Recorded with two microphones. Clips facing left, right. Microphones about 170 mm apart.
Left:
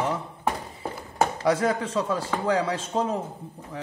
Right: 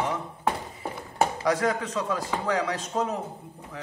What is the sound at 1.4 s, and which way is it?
Speech, 30° left (ahead or behind).